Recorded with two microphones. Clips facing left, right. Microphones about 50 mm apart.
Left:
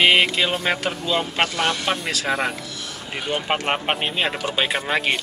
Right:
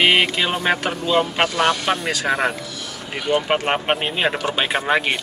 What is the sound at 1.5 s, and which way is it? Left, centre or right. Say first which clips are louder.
Speech: right 4 dB; right.